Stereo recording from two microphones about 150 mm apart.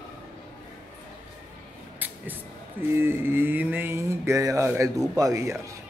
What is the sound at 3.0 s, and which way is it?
A man's voice, 15° right (ahead or behind).